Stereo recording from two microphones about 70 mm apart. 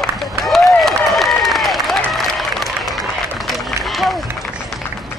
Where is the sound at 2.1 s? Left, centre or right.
Centre.